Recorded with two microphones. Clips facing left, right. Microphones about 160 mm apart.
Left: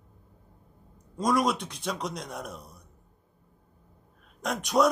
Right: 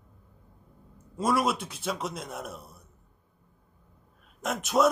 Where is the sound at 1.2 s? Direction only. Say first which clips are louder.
Left 1 dB; 5° right (ahead or behind).